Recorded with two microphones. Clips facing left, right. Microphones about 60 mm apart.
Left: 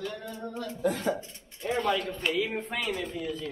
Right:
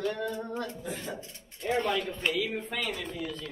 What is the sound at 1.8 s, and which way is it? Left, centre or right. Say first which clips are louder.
Speech: left 1 dB; centre.